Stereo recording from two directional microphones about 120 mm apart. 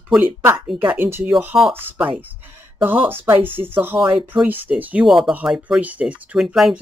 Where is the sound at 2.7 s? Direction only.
15° right (ahead or behind).